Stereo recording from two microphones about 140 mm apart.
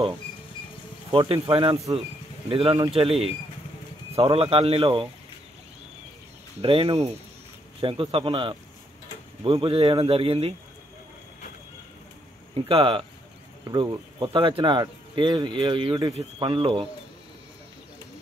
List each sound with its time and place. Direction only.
1.1 s speech: 40° right (ahead or behind)
4.2 s speech: 45° right (ahead or behind)
6.6 s speech: 40° right (ahead or behind)
12.6 s speech: 40° right (ahead or behind)